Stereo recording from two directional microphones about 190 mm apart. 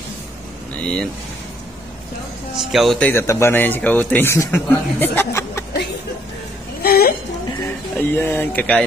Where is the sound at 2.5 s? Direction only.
Centre (ahead or behind); by 5.7 s 15° left (ahead or behind).